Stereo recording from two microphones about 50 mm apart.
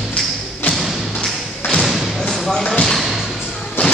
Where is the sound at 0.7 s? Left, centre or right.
Centre.